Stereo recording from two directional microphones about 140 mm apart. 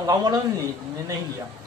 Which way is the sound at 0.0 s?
25° right (ahead or behind).